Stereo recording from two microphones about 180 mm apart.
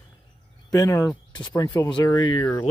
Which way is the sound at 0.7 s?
20° left (ahead or behind).